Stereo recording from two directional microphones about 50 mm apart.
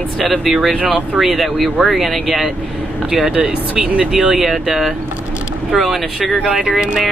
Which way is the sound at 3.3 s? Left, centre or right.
Right.